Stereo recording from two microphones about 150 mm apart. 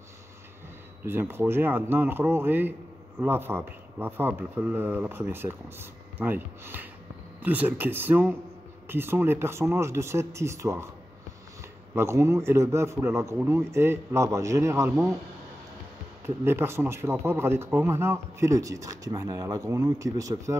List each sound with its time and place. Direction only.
1.0 s speech: 15° right (ahead or behind)
11.9 s a man's voice: 15° right (ahead or behind)
16.3 s a man's voice: 15° right (ahead or behind)